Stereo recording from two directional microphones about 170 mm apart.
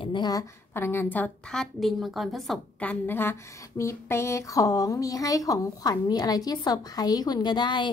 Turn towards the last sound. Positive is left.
turn(degrees=25)  # may be behind; listen again after turning